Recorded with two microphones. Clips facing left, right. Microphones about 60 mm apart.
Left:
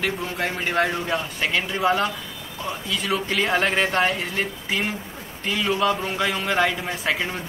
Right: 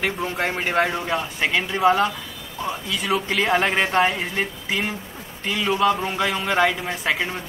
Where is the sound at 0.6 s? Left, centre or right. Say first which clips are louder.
Right 1 dB; centre.